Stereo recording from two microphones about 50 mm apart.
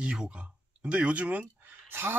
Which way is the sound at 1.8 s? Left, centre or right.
Right.